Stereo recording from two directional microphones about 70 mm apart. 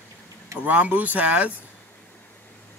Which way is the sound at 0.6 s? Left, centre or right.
Right.